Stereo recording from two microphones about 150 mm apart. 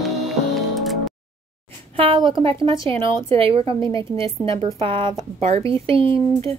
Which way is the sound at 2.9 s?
35° right (ahead or behind).